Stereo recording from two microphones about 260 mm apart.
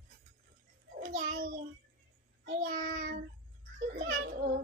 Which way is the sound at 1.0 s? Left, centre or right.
Right.